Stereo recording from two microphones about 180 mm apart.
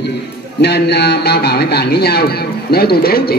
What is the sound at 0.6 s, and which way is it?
A man's voice, 70° left (ahead or behind).